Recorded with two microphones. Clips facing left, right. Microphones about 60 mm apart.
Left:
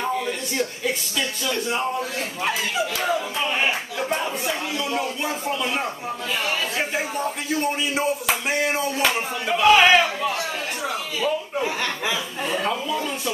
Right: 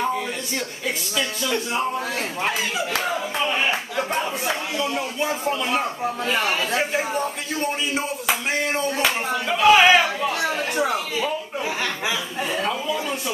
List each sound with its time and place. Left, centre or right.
4.7 s speech: centre
6.3 s a man's voice: right
6.8 s speech: centre
11.6 s speech: centre